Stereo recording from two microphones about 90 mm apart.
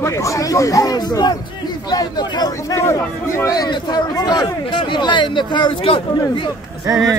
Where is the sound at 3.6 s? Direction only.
50° left (ahead or behind); by 6.0 s 75° left (ahead or behind).